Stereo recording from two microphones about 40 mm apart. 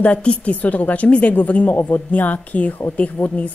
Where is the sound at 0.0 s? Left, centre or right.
Left.